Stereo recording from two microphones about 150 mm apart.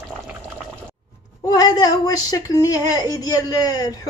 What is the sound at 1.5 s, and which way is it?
A woman's voice, 25° left (ahead or behind).